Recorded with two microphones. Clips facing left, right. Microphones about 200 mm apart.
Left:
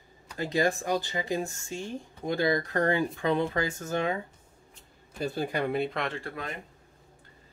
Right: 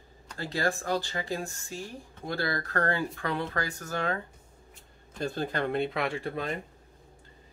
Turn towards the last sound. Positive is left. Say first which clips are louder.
# right 5 dB
turn(degrees=-25)  # may be behind; listen again after turning